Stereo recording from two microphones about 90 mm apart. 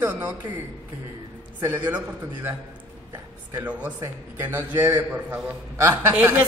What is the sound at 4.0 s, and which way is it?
Speech, 25° right (ahead or behind).